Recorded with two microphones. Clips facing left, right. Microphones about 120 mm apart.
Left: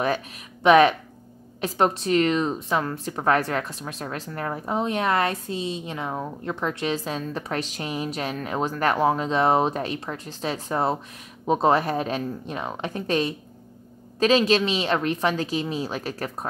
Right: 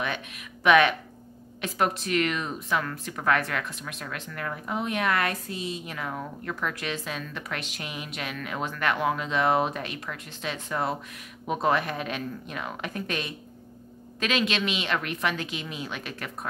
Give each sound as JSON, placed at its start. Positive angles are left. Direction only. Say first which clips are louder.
{"t": 0.7, "sound": "a woman's voice", "louder": "left 4 dB", "side_deg": 30}